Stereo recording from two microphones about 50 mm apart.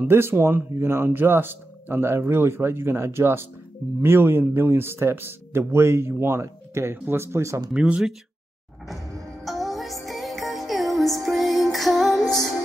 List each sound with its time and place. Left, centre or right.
0.1 s speech: right
7.7 s speech: centre
8.8 s music: centre